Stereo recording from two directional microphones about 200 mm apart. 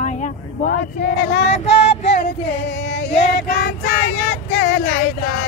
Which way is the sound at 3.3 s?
60° left (ahead or behind).